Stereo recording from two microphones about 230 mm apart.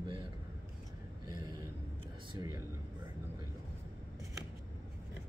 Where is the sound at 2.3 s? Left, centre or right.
Centre.